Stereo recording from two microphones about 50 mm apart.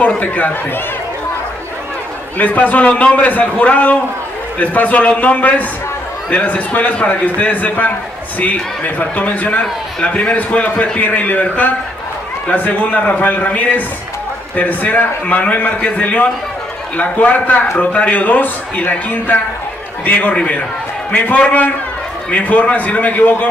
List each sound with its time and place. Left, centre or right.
0.0 s a man's voice: left
2.3 s a man's voice: left